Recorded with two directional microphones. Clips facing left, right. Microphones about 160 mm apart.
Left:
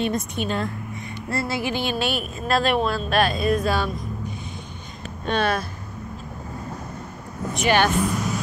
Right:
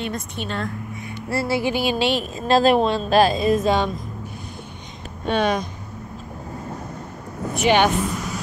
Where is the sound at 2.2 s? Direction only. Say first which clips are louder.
Right 7 dB; 30° right (ahead or behind).